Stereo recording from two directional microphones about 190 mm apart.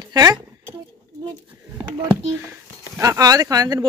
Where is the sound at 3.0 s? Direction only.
20° right (ahead or behind).